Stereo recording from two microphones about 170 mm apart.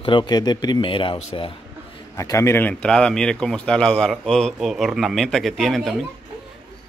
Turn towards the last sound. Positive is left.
turn(degrees=0)  # may be behind; listen again after turning